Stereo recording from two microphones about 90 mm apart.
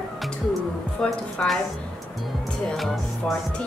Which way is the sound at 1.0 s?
5° left (ahead or behind).